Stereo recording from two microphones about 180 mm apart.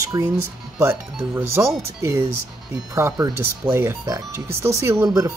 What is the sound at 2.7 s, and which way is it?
Speech, 15° right (ahead or behind).